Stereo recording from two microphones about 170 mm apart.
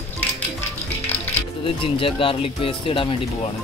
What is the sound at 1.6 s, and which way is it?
Speech, 30° left (ahead or behind).